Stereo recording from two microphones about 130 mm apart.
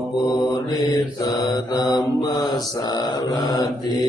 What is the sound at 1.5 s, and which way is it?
Mantra, 30° left (ahead or behind).